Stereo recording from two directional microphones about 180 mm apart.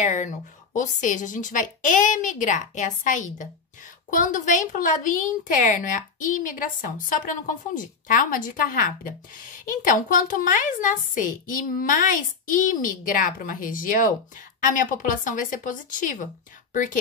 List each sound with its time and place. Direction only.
0.0 s a woman's voice: 45° left (ahead or behind)